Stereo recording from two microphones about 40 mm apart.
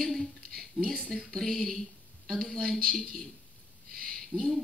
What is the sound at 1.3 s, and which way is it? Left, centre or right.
A man's voice, centre.